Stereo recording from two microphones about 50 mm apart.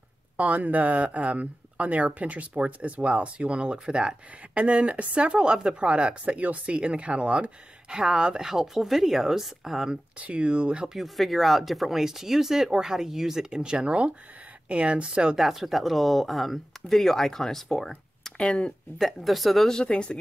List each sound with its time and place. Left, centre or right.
0.4 s speech: right
7.9 s speech: centre
10.1 s speech: right
11.0 s speech: centre; by 15.3 s right
15.3 s speech: centre
18.4 s speech: centre
18.9 s speech: centre